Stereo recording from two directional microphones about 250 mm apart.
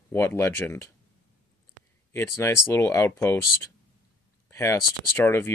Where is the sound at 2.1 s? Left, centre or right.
Centre.